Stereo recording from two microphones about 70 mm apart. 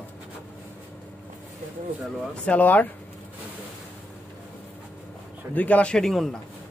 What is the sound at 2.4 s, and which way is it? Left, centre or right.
Speech, left.